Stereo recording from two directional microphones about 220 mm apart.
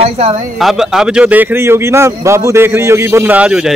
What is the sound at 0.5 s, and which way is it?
A man's voice, centre (ahead or behind).